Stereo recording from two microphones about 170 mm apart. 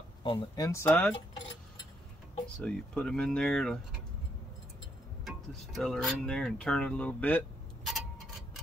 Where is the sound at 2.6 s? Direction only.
5° left (ahead or behind).